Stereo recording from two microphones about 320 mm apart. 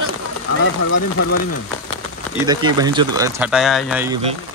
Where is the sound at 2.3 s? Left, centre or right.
Centre.